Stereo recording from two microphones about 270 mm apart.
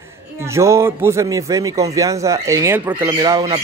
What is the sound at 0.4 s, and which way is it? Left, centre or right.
A man's voice, centre.